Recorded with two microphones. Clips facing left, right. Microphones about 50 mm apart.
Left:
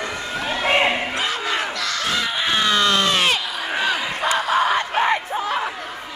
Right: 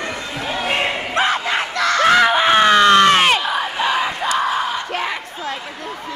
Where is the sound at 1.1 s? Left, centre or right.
Right.